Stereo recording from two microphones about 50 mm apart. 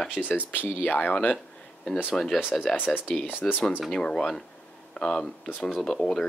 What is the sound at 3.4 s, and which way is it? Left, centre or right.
Speech, centre.